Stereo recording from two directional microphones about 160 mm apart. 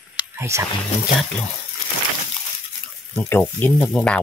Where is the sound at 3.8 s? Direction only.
Centre (ahead or behind).